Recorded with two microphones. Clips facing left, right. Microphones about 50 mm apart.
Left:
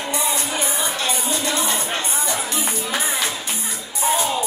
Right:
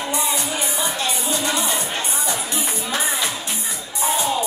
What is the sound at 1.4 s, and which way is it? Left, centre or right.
Music, right.